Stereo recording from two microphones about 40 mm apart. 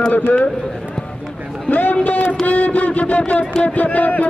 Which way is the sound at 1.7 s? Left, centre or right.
Left.